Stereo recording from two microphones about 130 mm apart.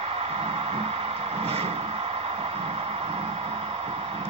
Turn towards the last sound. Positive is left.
turn(degrees=-50)  # may be behind; listen again after turning